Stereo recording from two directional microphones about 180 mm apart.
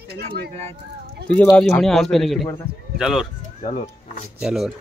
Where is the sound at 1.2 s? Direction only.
5° left (ahead or behind).